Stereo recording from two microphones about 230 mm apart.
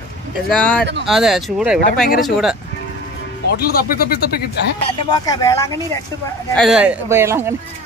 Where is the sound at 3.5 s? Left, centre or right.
Left.